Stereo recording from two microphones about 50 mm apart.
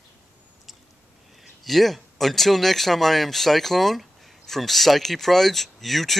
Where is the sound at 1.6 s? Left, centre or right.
Centre.